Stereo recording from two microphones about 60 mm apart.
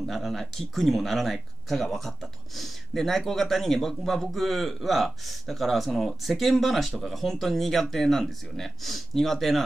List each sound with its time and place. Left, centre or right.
0.0 s speech: centre